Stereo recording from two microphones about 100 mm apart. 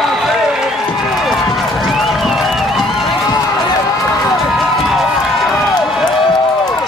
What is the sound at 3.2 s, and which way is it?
Run, 45° left (ahead or behind).